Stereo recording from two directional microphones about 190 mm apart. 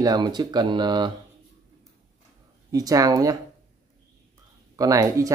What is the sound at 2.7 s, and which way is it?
Speech, 20° right (ahead or behind).